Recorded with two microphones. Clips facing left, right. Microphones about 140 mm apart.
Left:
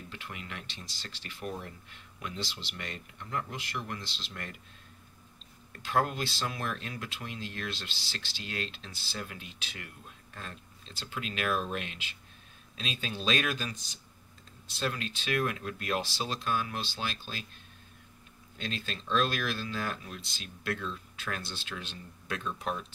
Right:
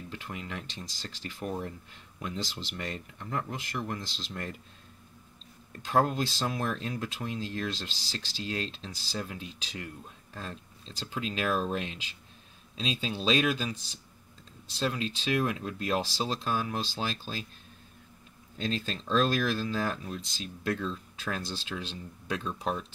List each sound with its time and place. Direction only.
0.1 s speech: 35° right (ahead or behind)
5.9 s speech: 35° right (ahead or behind)
14.8 s speech: 25° right (ahead or behind)
18.6 s speech: 35° right (ahead or behind)